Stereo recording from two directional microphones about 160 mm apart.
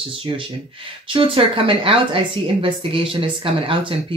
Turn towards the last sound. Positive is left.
turn(degrees=-35)  # may be behind; listen again after turning